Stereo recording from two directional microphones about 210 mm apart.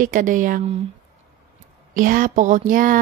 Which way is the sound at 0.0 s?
40° right (ahead or behind).